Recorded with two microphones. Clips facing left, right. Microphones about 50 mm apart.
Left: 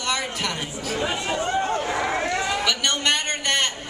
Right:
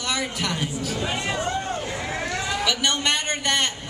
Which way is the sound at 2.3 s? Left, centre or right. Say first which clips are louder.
Left 3 dB; centre.